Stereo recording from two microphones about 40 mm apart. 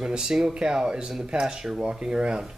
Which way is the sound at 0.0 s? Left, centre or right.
Centre.